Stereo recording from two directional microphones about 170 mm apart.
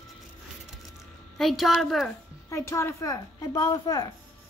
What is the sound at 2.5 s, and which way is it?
Speech, 15° left (ahead or behind).